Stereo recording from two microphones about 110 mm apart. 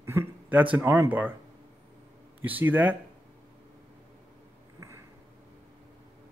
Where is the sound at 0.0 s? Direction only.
25° right (ahead or behind).